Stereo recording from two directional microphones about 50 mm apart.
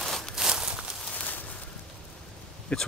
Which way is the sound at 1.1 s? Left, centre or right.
Left.